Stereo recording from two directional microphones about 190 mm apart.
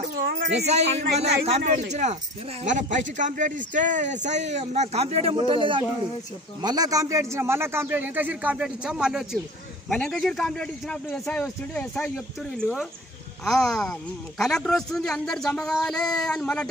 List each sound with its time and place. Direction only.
0.7 s a man's voice: 35° right (ahead or behind); by 16.6 s 5° left (ahead or behind)